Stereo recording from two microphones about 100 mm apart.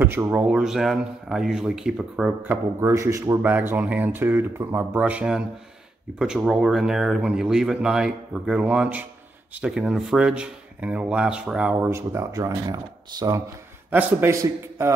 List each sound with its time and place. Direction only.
0.0 s speech: 20° right (ahead or behind)
0.5 s speech: 5° right (ahead or behind)
2.4 s speech: 25° right (ahead or behind)
3.4 s speech: 20° right (ahead or behind)
11.7 s speech: 25° right (ahead or behind); by 13.4 s 45° right (ahead or behind)
13.8 s a man's voice: 15° right (ahead or behind)
14.3 s speech: 30° right (ahead or behind)